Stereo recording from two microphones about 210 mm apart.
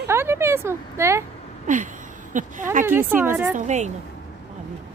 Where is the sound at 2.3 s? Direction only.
40° right (ahead or behind).